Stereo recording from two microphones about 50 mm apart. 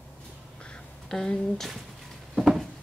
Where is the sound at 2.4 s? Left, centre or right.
Centre.